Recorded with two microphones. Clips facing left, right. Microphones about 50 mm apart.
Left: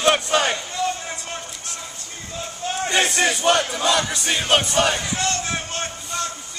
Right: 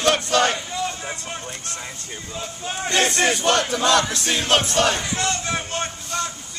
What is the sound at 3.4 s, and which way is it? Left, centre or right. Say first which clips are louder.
Crowd: even; centre.